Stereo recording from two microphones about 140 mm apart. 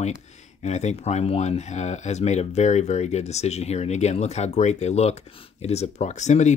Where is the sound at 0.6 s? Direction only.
55° left (ahead or behind).